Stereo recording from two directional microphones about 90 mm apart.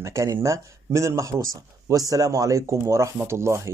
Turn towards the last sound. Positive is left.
turn(degrees=-30)  # may be behind; listen again after turning